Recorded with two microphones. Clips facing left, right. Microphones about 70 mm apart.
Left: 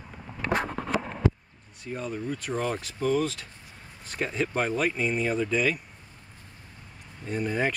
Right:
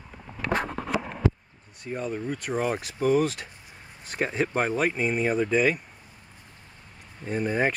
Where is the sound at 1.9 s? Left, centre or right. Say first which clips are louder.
Right 2 dB; centre.